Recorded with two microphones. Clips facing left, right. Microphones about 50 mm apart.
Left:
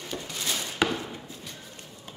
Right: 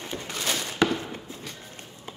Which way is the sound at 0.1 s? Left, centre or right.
Right.